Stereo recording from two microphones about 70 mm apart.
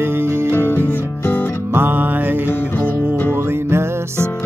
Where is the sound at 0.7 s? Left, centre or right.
Left.